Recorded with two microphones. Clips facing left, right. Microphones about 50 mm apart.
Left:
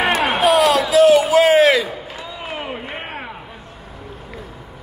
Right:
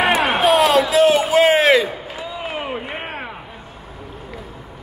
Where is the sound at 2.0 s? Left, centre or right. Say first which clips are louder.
Right 2 dB; centre.